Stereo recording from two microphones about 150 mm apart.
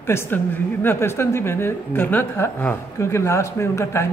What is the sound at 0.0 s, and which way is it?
A woman's voice, 15° left (ahead or behind).